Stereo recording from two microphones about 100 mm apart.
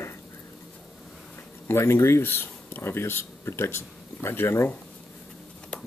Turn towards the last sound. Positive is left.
turn(degrees=25)  # may be behind; listen again after turning